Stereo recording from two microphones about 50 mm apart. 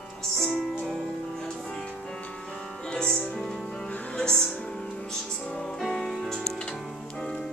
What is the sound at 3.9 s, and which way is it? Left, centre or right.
Music, left.